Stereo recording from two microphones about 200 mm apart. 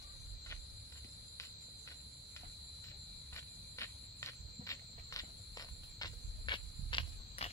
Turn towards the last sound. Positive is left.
turn(degrees=25)  # may be behind; listen again after turning